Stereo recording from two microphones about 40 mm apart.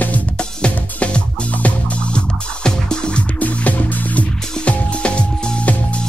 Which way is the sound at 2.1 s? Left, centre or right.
Left.